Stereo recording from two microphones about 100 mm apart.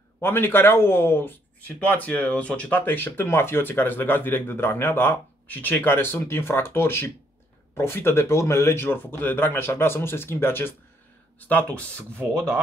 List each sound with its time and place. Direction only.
0.2 s speech: 25° left (ahead or behind)